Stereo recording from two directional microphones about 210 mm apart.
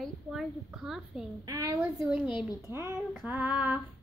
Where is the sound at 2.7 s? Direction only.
15° right (ahead or behind).